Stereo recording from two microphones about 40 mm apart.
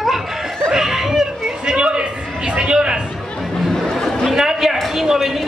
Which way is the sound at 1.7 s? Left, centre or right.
Right.